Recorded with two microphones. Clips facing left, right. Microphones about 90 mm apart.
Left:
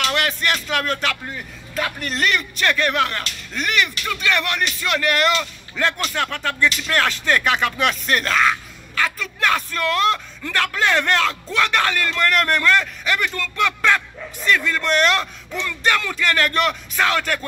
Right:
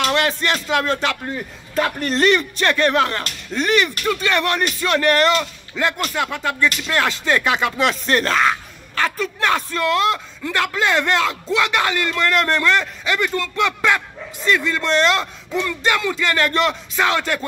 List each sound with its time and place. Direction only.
0.0 s speech: 25° right (ahead or behind)
5.4 s speech: 15° right (ahead or behind)